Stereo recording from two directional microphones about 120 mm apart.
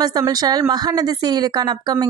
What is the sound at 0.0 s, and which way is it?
A woman's voice, 30° right (ahead or behind).